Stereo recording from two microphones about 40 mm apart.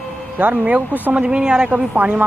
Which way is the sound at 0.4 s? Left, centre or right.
Right.